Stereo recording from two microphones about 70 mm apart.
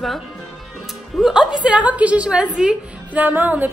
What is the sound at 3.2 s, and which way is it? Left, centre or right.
Music, right.